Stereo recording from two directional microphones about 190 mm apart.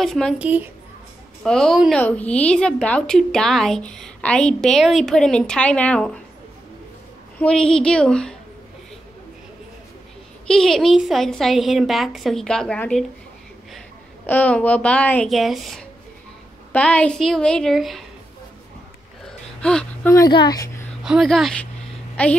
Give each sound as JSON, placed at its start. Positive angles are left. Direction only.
{"t": 0.0, "sound": "a woman's voice", "side_deg": 0}
{"t": 1.4, "sound": "a woman's voice", "side_deg": 0}
{"t": 7.3, "sound": "a woman's voice", "side_deg": 5}
{"t": 10.4, "sound": "a woman's voice", "side_deg": 5}
{"t": 14.2, "sound": "a woman's voice", "side_deg": 10}
{"t": 19.6, "sound": "speech", "side_deg": 5}
{"t": 20.1, "sound": "speech", "side_deg": 20}
{"t": 21.0, "sound": "a woman's voice", "side_deg": 0}